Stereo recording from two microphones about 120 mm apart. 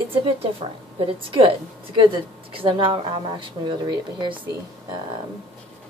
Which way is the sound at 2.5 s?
45° right (ahead or behind).